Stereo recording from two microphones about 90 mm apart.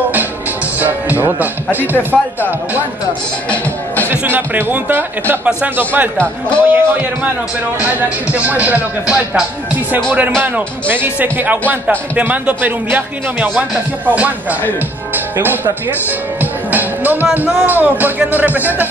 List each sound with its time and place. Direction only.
0.7 s music: 20° right (ahead or behind)
1.2 s speech: 20° right (ahead or behind)
3.4 s music: 20° left (ahead or behind)
4.1 s a man's voice: 25° right (ahead or behind)
6.1 s music: 15° left (ahead or behind)
6.6 s a man's voice: 25° right (ahead or behind)
10.4 s a man's voice: 20° right (ahead or behind)
16.3 s music: 20° right (ahead or behind)
17.6 s a man's voice: 20° right (ahead or behind)